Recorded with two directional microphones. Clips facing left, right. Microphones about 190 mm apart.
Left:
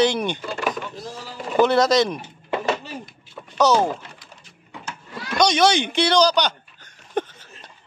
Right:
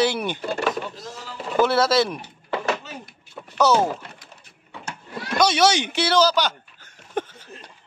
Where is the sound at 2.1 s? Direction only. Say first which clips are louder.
Left 2 dB; 25° left (ahead or behind).